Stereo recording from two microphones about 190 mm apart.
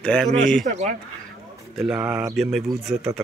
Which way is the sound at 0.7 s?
35° right (ahead or behind).